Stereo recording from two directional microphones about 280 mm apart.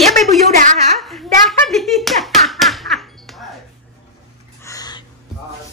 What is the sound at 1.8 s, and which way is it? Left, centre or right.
Music, centre.